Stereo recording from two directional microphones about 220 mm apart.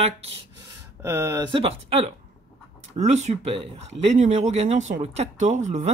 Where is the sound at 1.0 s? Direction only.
10° right (ahead or behind).